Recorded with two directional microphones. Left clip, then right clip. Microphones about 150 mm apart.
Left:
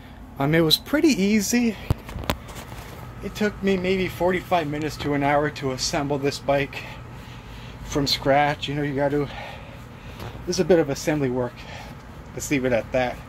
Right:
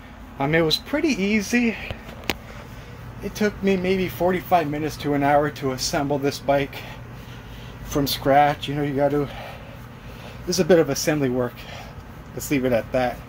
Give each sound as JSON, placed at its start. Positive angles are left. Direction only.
{"t": 0.4, "sound": "speech", "side_deg": 40}
{"t": 1.3, "sound": "speech", "side_deg": 30}
{"t": 3.3, "sound": "speech", "side_deg": -5}
{"t": 7.9, "sound": "speech", "side_deg": -10}
{"t": 10.5, "sound": "speech", "side_deg": -5}